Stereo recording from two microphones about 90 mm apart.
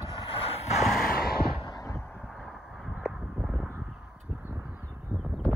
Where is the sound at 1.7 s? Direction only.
40° left (ahead or behind).